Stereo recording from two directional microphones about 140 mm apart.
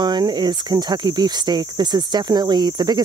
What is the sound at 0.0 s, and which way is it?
Speech, 30° right (ahead or behind).